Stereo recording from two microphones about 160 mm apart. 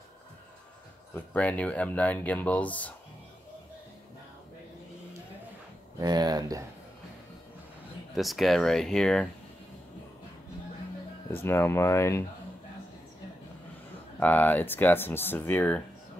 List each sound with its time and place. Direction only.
1.1 s speech: 10° left (ahead or behind)
5.9 s speech: 25° right (ahead or behind)
8.1 s speech: centre (ahead or behind)
11.3 s speech: 15° left (ahead or behind)
14.2 s speech: 10° left (ahead or behind)